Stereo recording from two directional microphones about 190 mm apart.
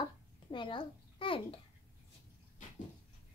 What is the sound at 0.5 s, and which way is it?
A child's voice, 25° left (ahead or behind).